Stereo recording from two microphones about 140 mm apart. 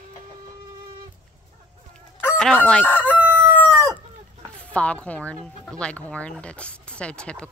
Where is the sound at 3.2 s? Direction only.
10° right (ahead or behind).